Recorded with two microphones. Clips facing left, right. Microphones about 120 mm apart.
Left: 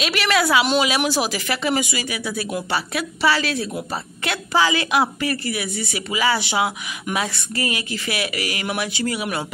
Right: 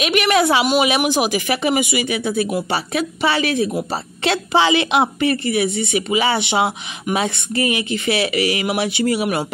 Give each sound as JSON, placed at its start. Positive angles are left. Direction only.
{"t": 0.0, "sound": "a woman's voice", "side_deg": -20}